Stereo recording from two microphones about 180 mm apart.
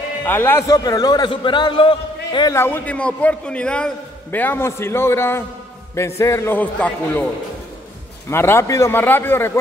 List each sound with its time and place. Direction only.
0.2 s a man's voice: 10° left (ahead or behind); by 2.5 s 25° left (ahead or behind)
2.5 s a man's voice: 10° left (ahead or behind)
8.3 s a man's voice: 15° left (ahead or behind)